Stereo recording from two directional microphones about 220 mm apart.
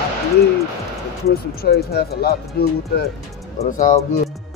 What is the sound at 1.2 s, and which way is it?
Speech, 45° left (ahead or behind).